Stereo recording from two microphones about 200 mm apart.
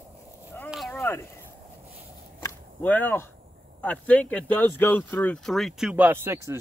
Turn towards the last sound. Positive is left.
turn(degrees=-10)  # may be behind; listen again after turning